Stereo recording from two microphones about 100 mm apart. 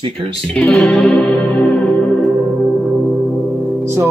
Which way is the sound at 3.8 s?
25° right (ahead or behind).